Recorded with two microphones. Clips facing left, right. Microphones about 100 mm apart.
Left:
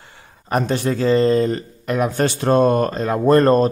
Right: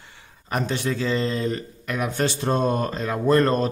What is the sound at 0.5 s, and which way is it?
A man's voice, 45° left (ahead or behind).